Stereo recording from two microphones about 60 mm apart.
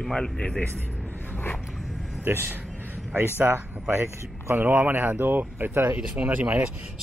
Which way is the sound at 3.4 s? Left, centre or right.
Right.